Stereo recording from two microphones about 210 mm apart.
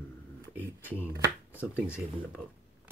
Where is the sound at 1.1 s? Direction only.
10° right (ahead or behind).